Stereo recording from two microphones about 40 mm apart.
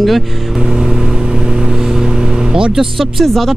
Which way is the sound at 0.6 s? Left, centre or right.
Centre.